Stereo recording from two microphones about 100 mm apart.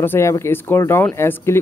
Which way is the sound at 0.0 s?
25° left (ahead or behind).